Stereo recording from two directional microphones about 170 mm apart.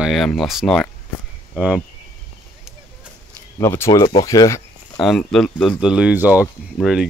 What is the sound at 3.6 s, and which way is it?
Speech, 15° left (ahead or behind).